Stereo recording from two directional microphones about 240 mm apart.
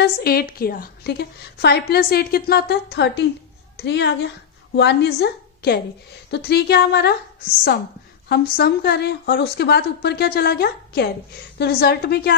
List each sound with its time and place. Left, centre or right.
0.0 s a woman's voice: left